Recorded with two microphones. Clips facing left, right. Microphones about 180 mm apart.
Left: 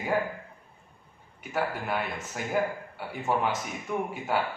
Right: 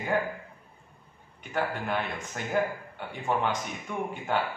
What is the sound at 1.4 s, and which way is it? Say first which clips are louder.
A man's voice: even; 5° left (ahead or behind).